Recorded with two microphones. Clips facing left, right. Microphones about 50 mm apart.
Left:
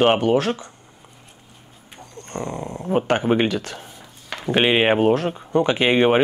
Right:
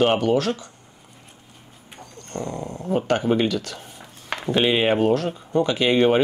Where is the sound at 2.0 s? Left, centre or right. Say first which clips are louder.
Left 1 dB; left.